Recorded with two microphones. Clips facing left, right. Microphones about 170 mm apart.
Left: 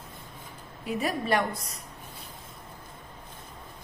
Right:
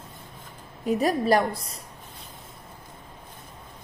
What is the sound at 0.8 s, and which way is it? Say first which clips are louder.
Speech: right 6 dB; 40° right (ahead or behind).